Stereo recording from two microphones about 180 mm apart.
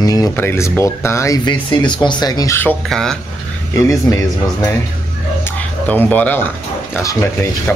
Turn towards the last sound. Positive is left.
turn(degrees=15)  # may be behind; listen again after turning